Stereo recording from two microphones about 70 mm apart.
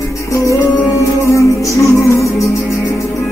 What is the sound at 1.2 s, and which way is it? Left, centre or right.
Music, left.